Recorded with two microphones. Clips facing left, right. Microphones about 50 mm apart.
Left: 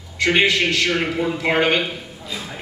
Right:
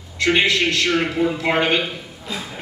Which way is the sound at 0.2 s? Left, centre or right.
Centre.